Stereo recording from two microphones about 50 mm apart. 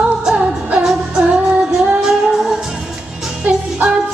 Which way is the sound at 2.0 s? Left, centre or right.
Centre.